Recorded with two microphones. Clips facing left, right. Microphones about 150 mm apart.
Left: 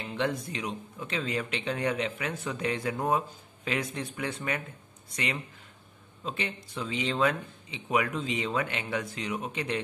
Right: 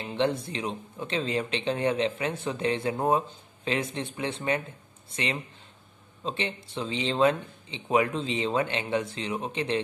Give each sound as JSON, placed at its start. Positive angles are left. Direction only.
{"t": 0.0, "sound": "speech", "side_deg": -30}